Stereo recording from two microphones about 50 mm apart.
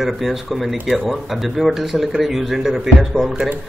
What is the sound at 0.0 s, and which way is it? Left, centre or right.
Speech, centre.